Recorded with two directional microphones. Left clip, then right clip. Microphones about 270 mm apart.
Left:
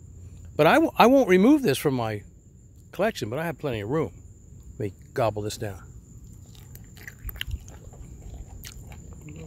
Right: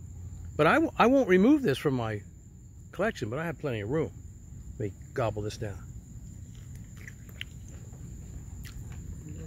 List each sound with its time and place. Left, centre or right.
0.6 s speech: centre